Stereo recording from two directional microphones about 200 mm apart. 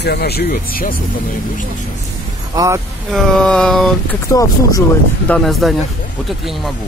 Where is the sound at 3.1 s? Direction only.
Centre (ahead or behind).